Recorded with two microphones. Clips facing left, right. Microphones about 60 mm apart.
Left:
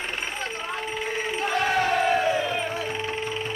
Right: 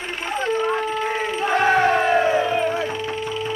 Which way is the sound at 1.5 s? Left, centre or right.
Right.